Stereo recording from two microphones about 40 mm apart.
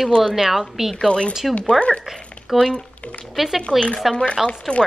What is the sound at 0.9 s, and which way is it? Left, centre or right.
Speech, left.